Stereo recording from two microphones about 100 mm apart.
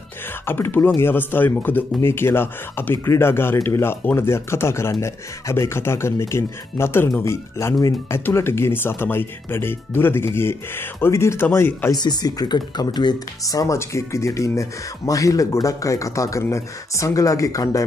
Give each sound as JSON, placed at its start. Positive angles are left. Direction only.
{"t": 0.5, "sound": "speech", "side_deg": 20}
{"t": 11.9, "sound": "speech", "side_deg": 45}
{"t": 13.4, "sound": "speech", "side_deg": 35}